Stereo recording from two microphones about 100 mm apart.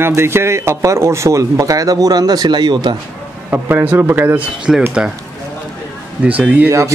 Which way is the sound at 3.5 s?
20° right (ahead or behind).